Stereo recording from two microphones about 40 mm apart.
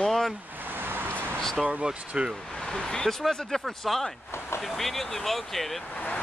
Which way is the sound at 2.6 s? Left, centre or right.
Centre.